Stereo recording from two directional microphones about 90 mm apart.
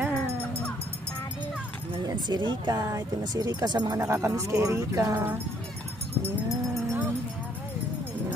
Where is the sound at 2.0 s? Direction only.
50° right (ahead or behind).